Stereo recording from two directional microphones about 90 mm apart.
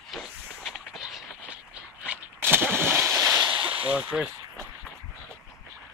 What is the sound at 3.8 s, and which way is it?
Speech, 15° right (ahead or behind).